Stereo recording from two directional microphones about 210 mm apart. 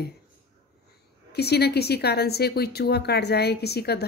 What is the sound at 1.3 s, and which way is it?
Speech, 50° left (ahead or behind).